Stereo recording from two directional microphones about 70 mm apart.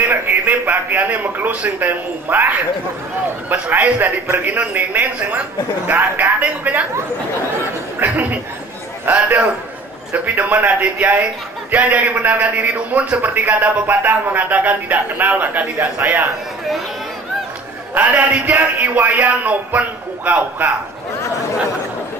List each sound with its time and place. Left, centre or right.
0.0 s a man's voice: right
8.0 s a man's voice: right
17.9 s a man's voice: right